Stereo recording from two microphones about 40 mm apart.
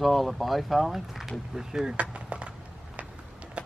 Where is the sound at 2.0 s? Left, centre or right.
Right.